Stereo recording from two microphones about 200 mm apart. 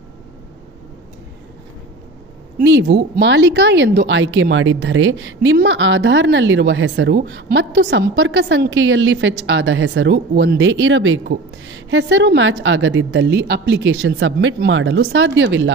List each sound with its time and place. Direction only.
2.6 s a woman's voice: 65° right (ahead or behind)